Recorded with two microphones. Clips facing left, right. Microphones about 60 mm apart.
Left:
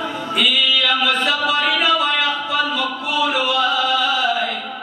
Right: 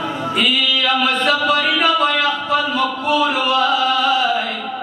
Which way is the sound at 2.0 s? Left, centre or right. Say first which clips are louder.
Right 2 dB; right.